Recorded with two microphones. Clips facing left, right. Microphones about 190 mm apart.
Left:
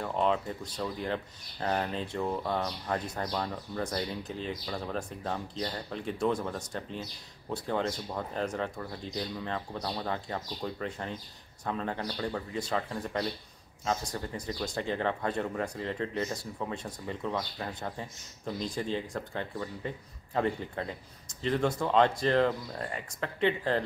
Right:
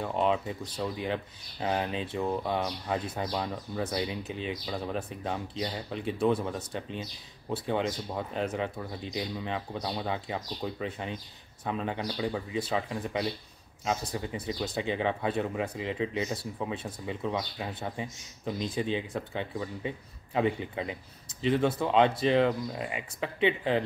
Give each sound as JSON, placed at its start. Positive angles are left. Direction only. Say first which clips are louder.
{"t": 0.0, "sound": "speech", "louder": "right 1 dB", "side_deg": -15}